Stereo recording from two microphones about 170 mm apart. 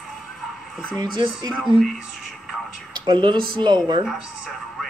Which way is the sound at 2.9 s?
25° right (ahead or behind).